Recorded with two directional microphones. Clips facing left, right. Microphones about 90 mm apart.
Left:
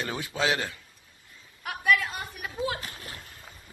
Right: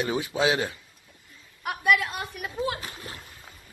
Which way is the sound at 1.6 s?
5° right (ahead or behind).